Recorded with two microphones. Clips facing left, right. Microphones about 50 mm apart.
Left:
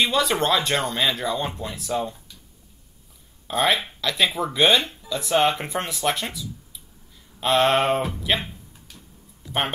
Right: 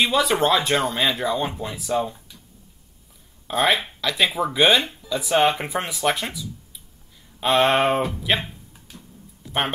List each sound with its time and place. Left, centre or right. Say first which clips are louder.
0.0 s speech: right 2 dB; centre
3.4 s speech: right 1 dB; centre
8.9 s a sound: right 4 dB; centre